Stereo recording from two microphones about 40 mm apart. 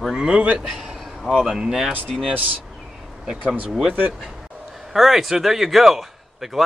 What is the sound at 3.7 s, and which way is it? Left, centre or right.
Speech, centre.